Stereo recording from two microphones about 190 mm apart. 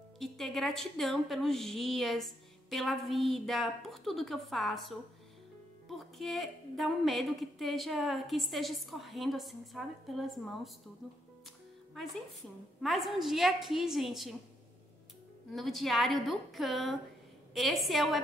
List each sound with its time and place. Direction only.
0.2 s speech: centre (ahead or behind)
12.8 s speech: centre (ahead or behind)
15.5 s speech: centre (ahead or behind)